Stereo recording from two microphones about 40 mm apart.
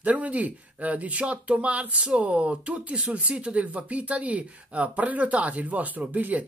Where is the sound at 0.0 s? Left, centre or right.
Right.